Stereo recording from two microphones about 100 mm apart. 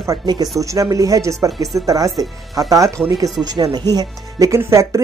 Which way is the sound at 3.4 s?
45° right (ahead or behind).